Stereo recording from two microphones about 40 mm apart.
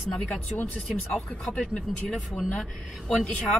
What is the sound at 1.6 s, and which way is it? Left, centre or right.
Speech, left.